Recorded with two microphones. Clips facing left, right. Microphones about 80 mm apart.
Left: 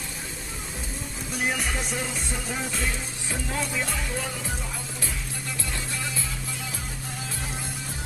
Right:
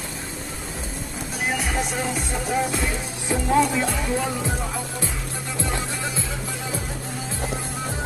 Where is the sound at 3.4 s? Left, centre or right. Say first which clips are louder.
Right 11 dB; right.